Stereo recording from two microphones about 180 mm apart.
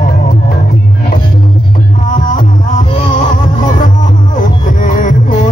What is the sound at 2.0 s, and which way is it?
Music, 45° left (ahead or behind).